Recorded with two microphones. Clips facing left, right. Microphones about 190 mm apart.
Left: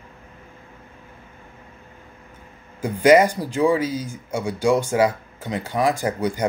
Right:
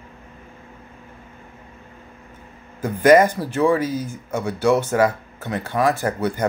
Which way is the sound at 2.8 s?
10° left (ahead or behind).